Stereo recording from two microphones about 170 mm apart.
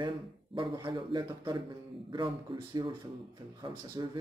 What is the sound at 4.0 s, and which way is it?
Speech, 25° right (ahead or behind).